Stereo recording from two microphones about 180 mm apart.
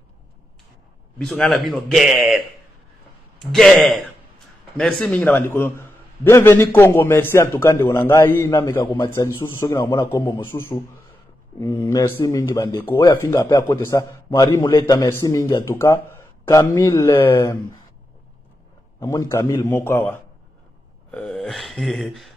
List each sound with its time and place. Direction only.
1.1 s a man's voice: 5° left (ahead or behind)
3.5 s a man's voice: centre (ahead or behind)
8.8 s a man's voice: 25° left (ahead or behind)
9.4 s speech: 15° left (ahead or behind)
18.9 s a man's voice: 15° left (ahead or behind); by 22.3 s centre (ahead or behind)